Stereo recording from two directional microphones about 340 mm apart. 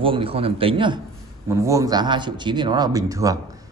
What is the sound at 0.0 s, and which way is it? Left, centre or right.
Speech, centre.